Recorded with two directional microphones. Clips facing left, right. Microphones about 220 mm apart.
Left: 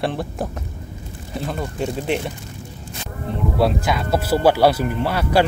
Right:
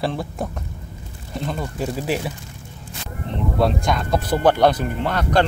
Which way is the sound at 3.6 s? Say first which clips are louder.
Left 1 dB; 5° left (ahead or behind).